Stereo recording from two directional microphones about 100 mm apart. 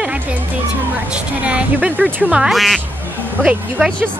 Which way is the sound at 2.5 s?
Centre (ahead or behind).